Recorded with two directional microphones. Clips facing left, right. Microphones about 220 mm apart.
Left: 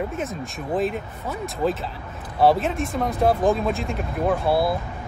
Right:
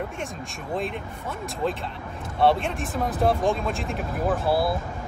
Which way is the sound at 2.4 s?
Centre (ahead or behind).